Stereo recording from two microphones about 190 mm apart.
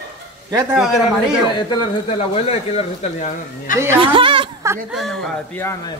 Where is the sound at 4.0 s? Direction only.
25° right (ahead or behind).